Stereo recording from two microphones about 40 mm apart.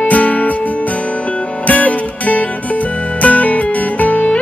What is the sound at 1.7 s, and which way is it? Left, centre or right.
Music, left.